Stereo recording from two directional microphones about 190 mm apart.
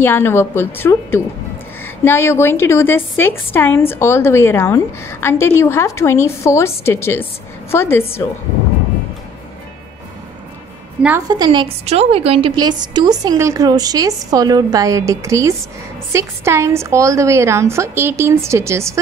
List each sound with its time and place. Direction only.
0.0 s a woman's voice: 10° left (ahead or behind)
11.0 s a woman's voice: 10° right (ahead or behind)
11.2 s a woman's voice: 25° right (ahead or behind)